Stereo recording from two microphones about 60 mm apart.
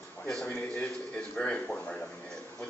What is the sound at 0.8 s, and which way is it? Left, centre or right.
A man's voice, centre.